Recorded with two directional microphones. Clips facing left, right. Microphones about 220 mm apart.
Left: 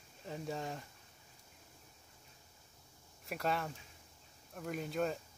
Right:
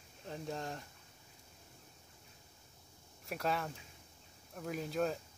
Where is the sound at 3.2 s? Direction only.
Centre (ahead or behind).